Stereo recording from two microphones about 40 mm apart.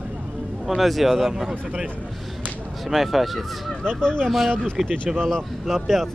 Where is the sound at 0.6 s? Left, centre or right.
Centre.